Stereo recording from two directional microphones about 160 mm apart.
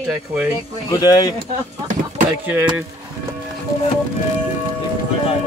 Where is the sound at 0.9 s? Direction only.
25° left (ahead or behind).